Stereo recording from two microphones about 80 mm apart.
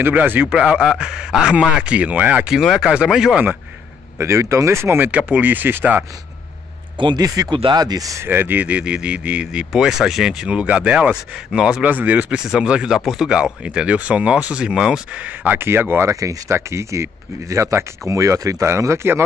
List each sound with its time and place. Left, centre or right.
0.0 s speech: right
0.5 s speech: centre
2.5 s speech: centre
2.8 s speech: centre
4.2 s speech: right
7.2 s speech: right
7.5 s speech: right
7.8 s speech: right
8.2 s speech: right
12.4 s speech: centre; by 16.1 s right
16.1 s speech: right